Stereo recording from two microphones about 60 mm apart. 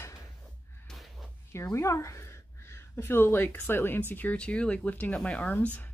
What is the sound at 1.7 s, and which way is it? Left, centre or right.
A woman's voice, left.